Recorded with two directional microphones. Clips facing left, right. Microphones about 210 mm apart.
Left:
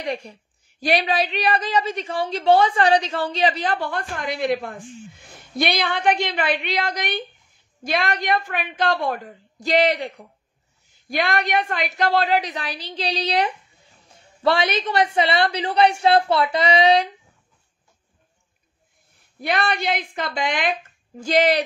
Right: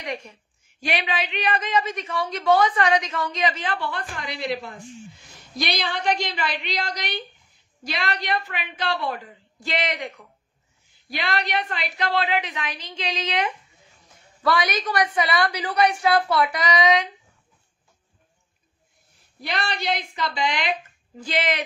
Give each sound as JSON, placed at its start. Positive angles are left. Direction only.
{"t": 0.0, "sound": "a woman's voice", "side_deg": 35}
{"t": 11.1, "sound": "a woman's voice", "side_deg": 50}
{"t": 19.4, "sound": "a woman's voice", "side_deg": 55}
{"t": 21.2, "sound": "a woman's voice", "side_deg": 40}